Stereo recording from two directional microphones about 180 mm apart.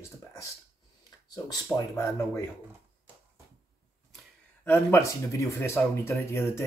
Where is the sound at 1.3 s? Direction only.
20° left (ahead or behind).